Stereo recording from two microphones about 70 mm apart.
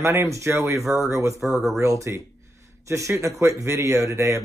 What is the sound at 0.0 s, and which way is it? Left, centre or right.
Speech, right.